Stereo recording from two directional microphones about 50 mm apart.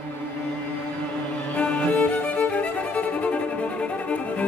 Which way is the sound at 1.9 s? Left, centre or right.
Left.